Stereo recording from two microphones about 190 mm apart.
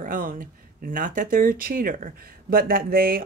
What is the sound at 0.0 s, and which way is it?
Speech, 45° right (ahead or behind).